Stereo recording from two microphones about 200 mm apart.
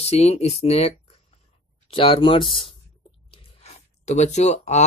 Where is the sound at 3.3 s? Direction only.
35° left (ahead or behind).